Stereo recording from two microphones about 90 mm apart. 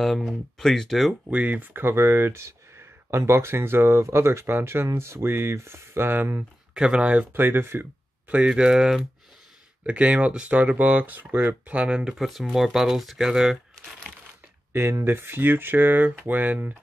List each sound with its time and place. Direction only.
0.0 s speech: centre (ahead or behind)
1.3 s speech: 15° right (ahead or behind)
6.7 s speech: 10° right (ahead or behind)
8.3 s speech: 10° right (ahead or behind)
14.7 s speech: 30° right (ahead or behind)